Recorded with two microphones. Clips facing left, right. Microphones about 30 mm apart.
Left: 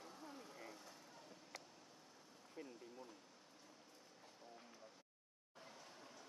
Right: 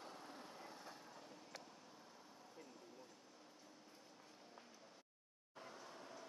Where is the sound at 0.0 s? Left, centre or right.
Right.